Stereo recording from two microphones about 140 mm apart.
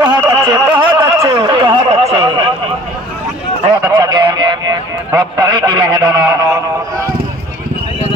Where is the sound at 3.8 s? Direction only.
25° right (ahead or behind).